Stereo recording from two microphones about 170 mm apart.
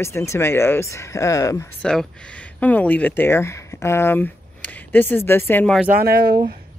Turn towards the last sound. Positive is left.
turn(degrees=-65)  # may be behind; listen again after turning